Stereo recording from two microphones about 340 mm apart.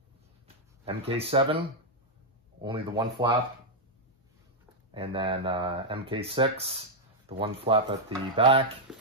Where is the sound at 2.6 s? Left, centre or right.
Centre.